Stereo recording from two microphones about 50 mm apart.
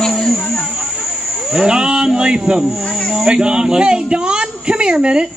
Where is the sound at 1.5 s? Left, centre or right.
Centre.